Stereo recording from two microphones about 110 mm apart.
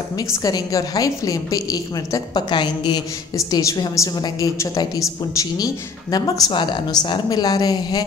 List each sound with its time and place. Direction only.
0.3 s a woman's voice: 30° left (ahead or behind)
3.3 s a woman's voice: 35° left (ahead or behind)